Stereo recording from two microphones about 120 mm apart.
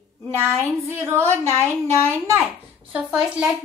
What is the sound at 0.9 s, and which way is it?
Speech, 20° right (ahead or behind).